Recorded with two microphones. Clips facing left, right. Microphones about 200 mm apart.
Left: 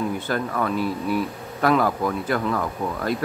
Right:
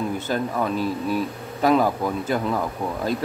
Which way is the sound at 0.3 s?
20° right (ahead or behind).